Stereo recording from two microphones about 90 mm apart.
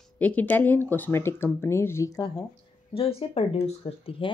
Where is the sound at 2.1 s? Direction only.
45° left (ahead or behind).